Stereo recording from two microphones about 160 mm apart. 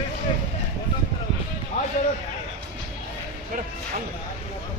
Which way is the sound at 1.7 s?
45° left (ahead or behind).